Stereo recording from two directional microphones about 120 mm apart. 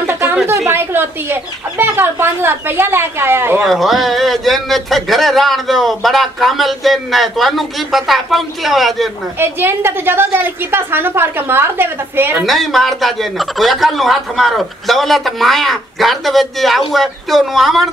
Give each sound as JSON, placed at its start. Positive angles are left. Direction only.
{"t": 0.0, "sound": "a sound", "side_deg": -20}
{"t": 0.5, "sound": "speech", "side_deg": -20}
{"t": 3.6, "sound": "a man's voice", "side_deg": 0}
{"t": 9.4, "sound": "a woman's voice", "side_deg": -20}
{"t": 12.4, "sound": "a man's voice", "side_deg": 0}